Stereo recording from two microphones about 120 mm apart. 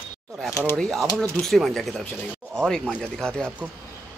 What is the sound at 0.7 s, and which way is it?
A man's voice, centre (ahead or behind).